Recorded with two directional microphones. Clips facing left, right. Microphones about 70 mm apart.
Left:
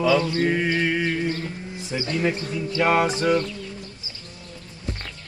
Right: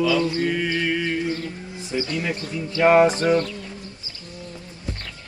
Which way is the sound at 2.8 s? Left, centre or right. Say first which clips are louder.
Right 5 dB; right.